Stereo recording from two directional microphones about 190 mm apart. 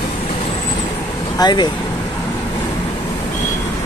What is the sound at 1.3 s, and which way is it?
Speech, 20° left (ahead or behind).